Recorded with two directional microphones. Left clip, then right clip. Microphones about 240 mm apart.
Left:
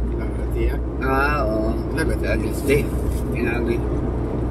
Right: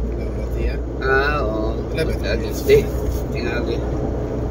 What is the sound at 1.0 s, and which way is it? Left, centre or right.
Vehicle, centre.